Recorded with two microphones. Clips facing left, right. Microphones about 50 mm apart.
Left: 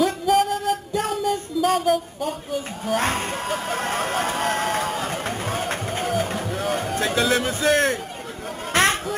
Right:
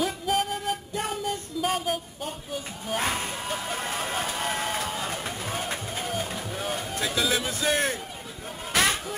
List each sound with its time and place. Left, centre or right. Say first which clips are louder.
0.0 s music: left 7 dB; centre
2.9 s speech: left 5 dB; centre
4.7 s a sound: left 5 dB; centre
5.3 s music: left 5 dB; centre
7.6 s speech: left 7 dB; centre
8.7 s a sound: left 5 dB; left